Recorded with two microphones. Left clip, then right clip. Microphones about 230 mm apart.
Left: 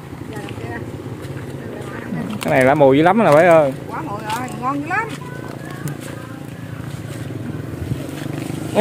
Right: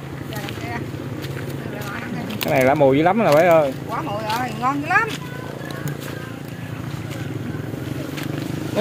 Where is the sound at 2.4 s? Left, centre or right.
Centre.